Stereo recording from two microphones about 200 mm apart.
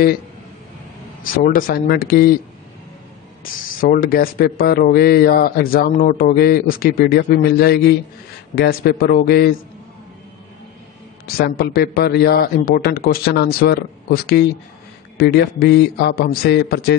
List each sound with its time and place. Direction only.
1.2 s speech: 45° left (ahead or behind)
3.8 s speech: 45° left (ahead or behind)
11.2 s speech: 50° left (ahead or behind)